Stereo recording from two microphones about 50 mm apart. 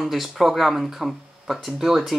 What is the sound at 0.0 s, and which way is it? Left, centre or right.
Speech, centre.